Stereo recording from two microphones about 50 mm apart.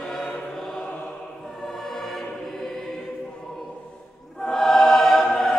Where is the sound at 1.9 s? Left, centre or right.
Centre.